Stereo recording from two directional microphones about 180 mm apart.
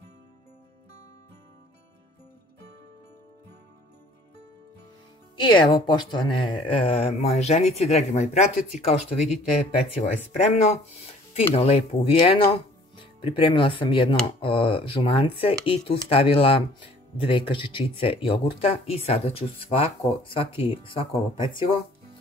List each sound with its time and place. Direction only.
5.6 s speech: 25° left (ahead or behind)